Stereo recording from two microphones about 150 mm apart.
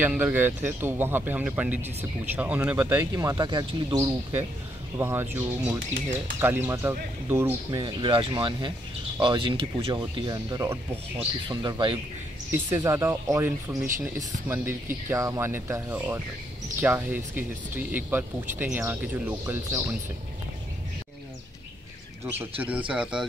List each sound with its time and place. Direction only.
0.0 s speech: 10° right (ahead or behind)
2.9 s speech: 20° right (ahead or behind)
7.8 s speech: 35° right (ahead or behind)
12.4 s speech: 15° right (ahead or behind)
22.6 s speech: 10° right (ahead or behind)